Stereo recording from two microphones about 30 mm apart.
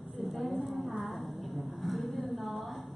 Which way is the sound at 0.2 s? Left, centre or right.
Centre.